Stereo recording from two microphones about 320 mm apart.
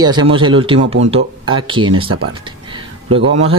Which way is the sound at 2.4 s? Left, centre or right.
Centre.